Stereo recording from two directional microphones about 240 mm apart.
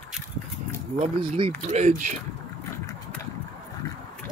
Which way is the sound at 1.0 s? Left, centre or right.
Right.